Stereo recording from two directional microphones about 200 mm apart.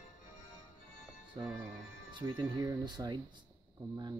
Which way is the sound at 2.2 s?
20° right (ahead or behind).